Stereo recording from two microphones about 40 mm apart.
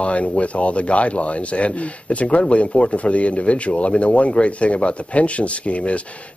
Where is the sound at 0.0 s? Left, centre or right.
Left.